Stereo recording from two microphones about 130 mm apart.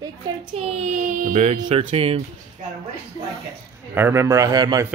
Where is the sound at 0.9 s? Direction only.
90° right.